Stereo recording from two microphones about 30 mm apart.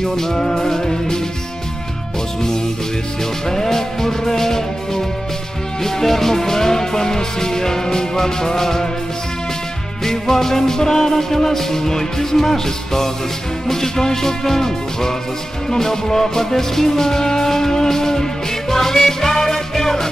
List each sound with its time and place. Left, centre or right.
0.0 s music: centre
3.4 s music: centre
10.0 s music: centre